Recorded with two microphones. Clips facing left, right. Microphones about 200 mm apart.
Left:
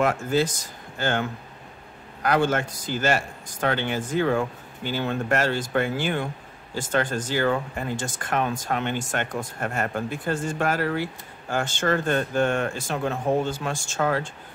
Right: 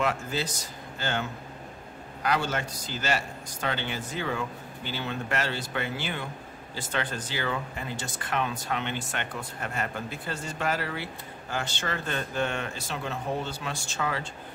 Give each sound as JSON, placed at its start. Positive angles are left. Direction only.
{"t": 0.0, "sound": "speech", "side_deg": 50}
{"t": 2.2, "sound": "speech", "side_deg": 50}